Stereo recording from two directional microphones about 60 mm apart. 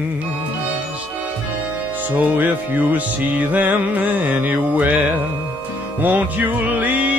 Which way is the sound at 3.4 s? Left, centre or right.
Right.